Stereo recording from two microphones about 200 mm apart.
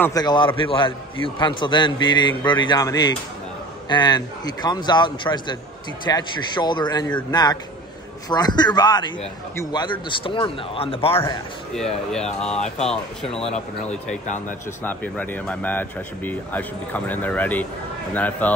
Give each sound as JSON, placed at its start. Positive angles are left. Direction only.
{"t": 0.0, "sound": "a man's voice", "side_deg": 20}
{"t": 11.7, "sound": "speech", "side_deg": 5}
{"t": 12.5, "sound": "speech", "side_deg": 35}
{"t": 12.8, "sound": "speech", "side_deg": 5}